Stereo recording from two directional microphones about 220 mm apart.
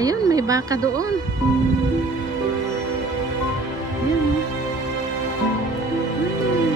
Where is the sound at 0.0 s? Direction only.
15° right (ahead or behind).